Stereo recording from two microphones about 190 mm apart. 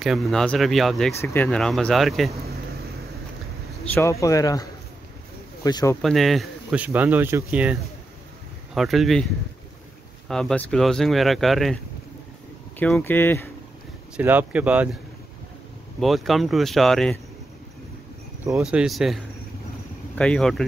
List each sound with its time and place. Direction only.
0.0 s speech: centre (ahead or behind)
3.9 s speech: 15° left (ahead or behind)
6.0 s speech: centre (ahead or behind)
8.7 s speech: centre (ahead or behind)
14.1 s speech: 10° right (ahead or behind)
16.0 s speech: centre (ahead or behind)
18.6 s speech: 5° right (ahead or behind)